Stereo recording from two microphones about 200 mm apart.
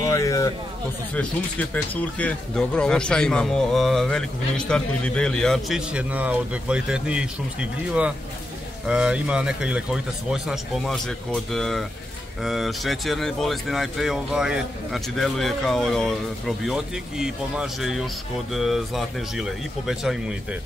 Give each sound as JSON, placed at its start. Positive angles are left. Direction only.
{"t": 0.0, "sound": "speech", "side_deg": 15}
{"t": 8.8, "sound": "speech", "side_deg": -5}